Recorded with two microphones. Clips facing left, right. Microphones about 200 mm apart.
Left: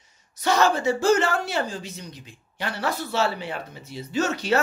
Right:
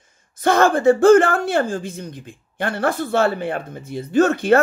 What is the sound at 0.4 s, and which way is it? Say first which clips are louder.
Speech: right 5 dB; 55° right (ahead or behind).